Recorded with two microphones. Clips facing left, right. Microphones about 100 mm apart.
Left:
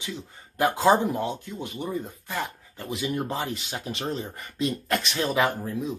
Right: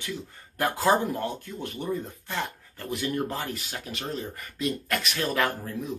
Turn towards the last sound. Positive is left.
turn(degrees=15)  # may be behind; listen again after turning